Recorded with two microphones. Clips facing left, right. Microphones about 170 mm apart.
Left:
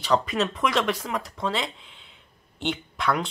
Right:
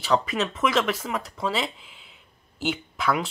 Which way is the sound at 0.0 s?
Centre (ahead or behind).